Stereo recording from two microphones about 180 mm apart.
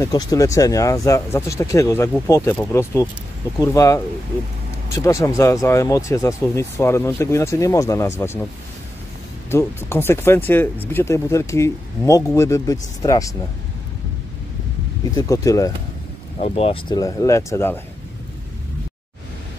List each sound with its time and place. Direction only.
0.0 s speech: 20° left (ahead or behind)
9.5 s speech: 15° left (ahead or behind)
15.1 s speech: 20° left (ahead or behind)
16.3 s speech: 35° left (ahead or behind)
16.9 s speech: 20° left (ahead or behind)